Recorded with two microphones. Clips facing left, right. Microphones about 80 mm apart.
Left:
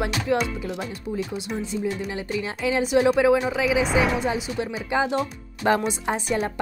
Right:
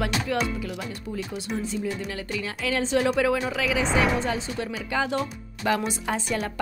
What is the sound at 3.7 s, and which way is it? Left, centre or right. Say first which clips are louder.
Speech: left 1 dB; centre.